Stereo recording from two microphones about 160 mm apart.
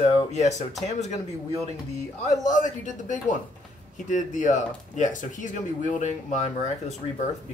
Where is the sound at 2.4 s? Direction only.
55° left (ahead or behind).